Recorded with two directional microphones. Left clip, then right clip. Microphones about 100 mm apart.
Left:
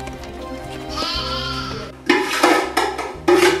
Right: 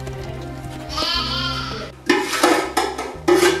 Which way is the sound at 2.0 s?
10° right (ahead or behind).